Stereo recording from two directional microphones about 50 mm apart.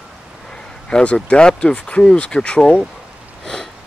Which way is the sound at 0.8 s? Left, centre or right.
Centre.